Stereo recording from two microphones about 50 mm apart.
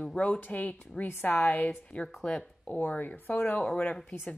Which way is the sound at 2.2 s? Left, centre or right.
Centre.